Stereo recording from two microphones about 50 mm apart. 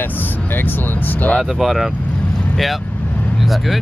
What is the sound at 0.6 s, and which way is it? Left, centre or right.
Speech, left.